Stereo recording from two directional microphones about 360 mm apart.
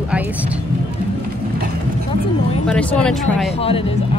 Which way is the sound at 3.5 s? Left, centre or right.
Centre.